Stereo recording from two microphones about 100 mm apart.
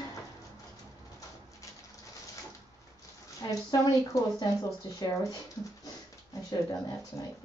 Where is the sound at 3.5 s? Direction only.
40° left (ahead or behind).